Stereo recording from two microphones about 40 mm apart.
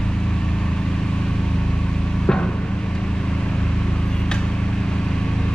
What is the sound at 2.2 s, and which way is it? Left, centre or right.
Vehicle, left.